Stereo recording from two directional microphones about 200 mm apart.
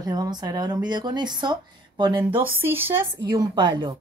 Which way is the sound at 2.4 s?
10° right (ahead or behind).